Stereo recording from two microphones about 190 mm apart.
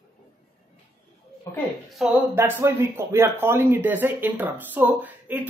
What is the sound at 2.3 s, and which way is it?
Speech, 10° right (ahead or behind).